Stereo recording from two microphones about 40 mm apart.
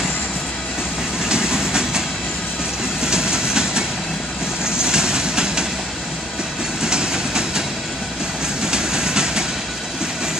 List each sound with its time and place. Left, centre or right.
1.3 s train: centre
4.8 s vehicle: centre
6.8 s train: centre
8.6 s train: centre